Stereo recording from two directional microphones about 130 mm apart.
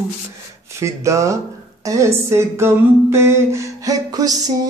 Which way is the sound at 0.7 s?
25° right (ahead or behind).